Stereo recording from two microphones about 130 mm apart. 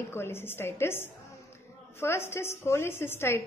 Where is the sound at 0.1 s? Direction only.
20° left (ahead or behind).